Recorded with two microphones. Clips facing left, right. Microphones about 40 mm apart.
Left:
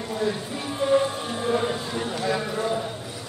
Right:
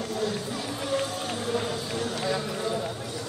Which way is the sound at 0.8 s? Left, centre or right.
Left.